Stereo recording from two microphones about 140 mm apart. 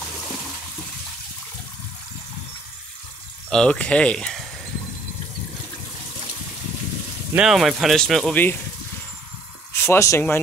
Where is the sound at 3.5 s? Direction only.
5° left (ahead or behind).